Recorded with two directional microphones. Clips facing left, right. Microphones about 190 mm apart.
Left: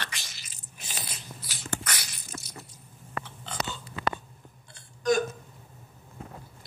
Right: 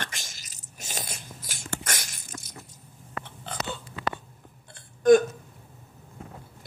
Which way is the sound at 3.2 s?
55° right (ahead or behind).